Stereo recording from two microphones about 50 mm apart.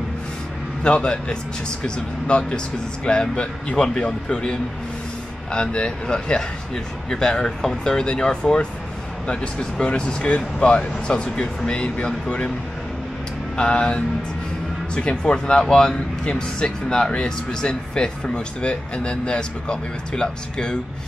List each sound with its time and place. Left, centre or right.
0.8 s speech: centre
13.6 s speech: centre